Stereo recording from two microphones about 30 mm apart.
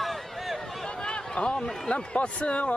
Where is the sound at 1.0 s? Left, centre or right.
Left.